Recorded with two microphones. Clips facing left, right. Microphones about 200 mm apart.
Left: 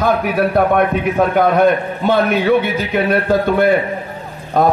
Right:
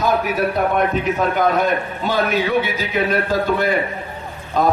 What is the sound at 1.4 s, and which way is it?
A man's voice, 55° left (ahead or behind).